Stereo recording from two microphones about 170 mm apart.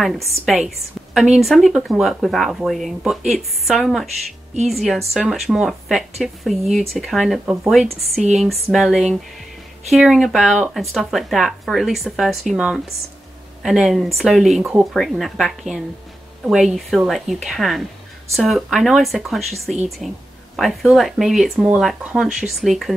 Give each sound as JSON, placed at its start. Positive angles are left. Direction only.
{"t": 0.0, "sound": "speech", "side_deg": 0}